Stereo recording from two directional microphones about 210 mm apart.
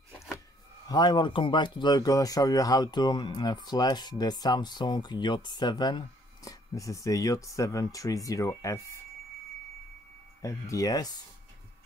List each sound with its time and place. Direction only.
0.8 s speech: 20° left (ahead or behind)
10.4 s speech: 15° left (ahead or behind)